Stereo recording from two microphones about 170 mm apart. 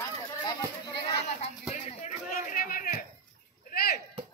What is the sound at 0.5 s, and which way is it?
Children playing, 20° left (ahead or behind).